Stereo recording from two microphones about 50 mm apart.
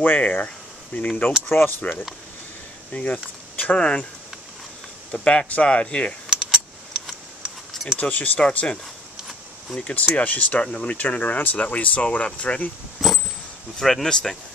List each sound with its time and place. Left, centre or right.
0.0 s speech: left
1.5 s speech: left
2.9 s speech: left
3.7 s speech: centre
5.1 s speech: left
6.3 s keys jangling: centre
8.0 s speech: left
8.4 s speech: left
9.8 s speech: left
13.0 s a sound: centre
13.7 s speech: centre